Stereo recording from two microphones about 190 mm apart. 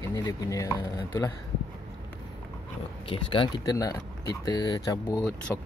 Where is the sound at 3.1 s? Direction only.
25° left (ahead or behind).